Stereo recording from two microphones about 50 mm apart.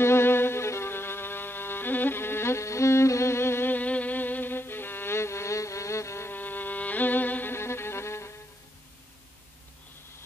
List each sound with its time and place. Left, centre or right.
0.0 s violin: left
3.7 s music: left
6.3 s music: left
7.5 s music: left